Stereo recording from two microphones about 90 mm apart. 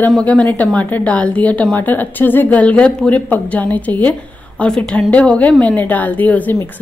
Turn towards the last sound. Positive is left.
turn(degrees=20)  # may be behind; listen again after turning